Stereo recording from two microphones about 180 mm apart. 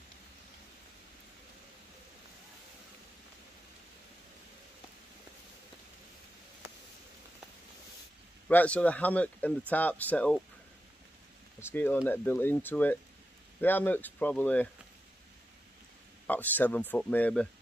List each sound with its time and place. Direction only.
8.5 s speech: 10° left (ahead or behind)
11.7 s speech: 10° left (ahead or behind)
16.3 s speech: 10° left (ahead or behind)